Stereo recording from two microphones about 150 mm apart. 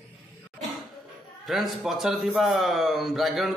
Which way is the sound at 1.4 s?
Centre (ahead or behind).